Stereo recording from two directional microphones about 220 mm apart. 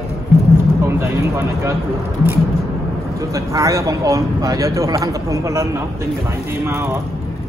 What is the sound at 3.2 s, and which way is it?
Speech, 15° right (ahead or behind).